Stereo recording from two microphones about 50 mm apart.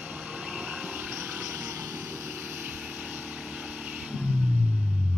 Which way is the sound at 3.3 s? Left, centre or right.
Centre.